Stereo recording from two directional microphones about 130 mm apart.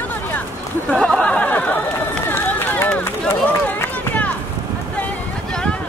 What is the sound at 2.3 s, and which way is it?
Run, 15° left (ahead or behind).